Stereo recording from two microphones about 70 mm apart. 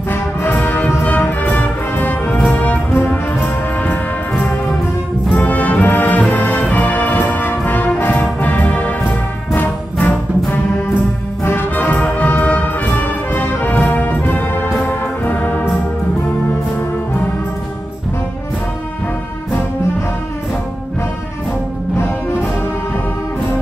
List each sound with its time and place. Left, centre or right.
0.1 s music: left
11.4 s orchestra: left
21.9 s music: left